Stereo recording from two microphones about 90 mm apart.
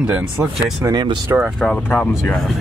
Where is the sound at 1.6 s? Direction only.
15° left (ahead or behind).